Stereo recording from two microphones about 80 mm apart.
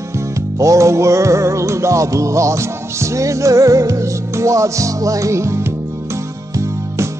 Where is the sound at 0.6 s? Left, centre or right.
Right.